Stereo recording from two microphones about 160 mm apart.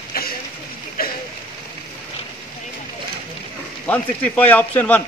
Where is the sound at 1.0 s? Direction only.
70° left (ahead or behind).